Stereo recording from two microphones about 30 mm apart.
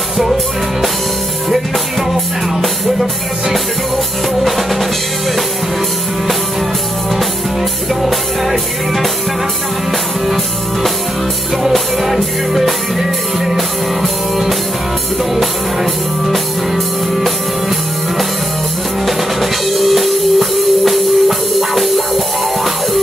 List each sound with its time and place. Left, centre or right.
4.4 s music: centre
7.9 s music: centre
10.2 s music: centre
16.3 s music: centre